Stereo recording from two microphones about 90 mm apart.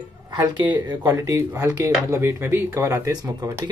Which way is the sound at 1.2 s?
35° right (ahead or behind).